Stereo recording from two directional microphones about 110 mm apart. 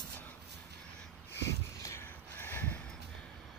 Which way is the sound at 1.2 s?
25° left (ahead or behind).